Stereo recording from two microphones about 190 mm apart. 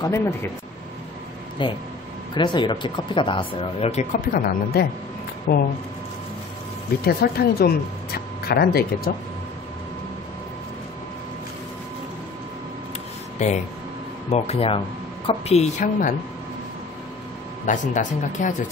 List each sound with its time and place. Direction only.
0.0 s speech: 15° left (ahead or behind)
1.6 s speech: 25° left (ahead or behind); by 5.6 s 55° left (ahead or behind)
7.1 s speech: 55° left (ahead or behind)
14.3 s a woman's voice: 30° left (ahead or behind)
17.6 s a woman's voice: 40° left (ahead or behind)